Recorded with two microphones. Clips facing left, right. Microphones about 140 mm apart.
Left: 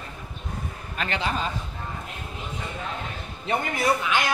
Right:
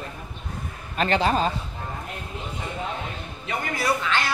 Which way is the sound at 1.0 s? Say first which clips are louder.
Right 6 dB; 35° right (ahead or behind).